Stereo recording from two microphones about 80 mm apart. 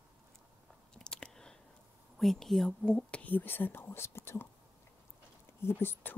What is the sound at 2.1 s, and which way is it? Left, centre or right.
Speech, centre.